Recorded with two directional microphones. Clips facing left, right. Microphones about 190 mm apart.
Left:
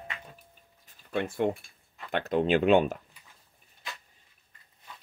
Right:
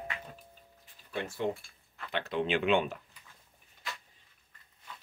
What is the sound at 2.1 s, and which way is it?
Speech, 45° left (ahead or behind).